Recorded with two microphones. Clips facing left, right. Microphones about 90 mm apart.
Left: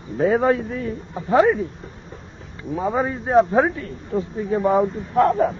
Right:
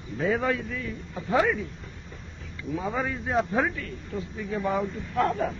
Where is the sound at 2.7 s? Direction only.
30° left (ahead or behind).